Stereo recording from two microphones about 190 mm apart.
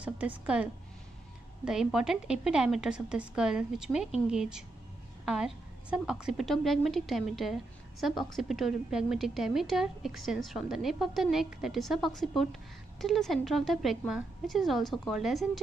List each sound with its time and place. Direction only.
0.0 s a woman's voice: 5° right (ahead or behind)